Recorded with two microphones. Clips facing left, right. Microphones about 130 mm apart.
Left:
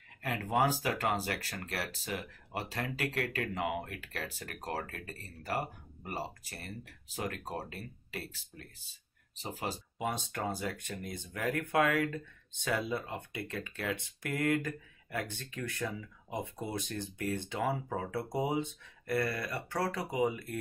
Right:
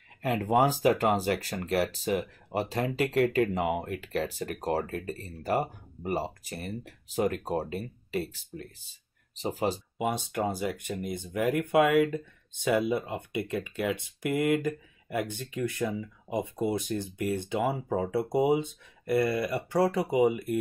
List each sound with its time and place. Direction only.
0.2 s speech: 25° right (ahead or behind)